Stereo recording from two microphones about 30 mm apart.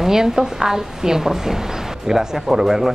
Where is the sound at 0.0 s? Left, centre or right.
Centre.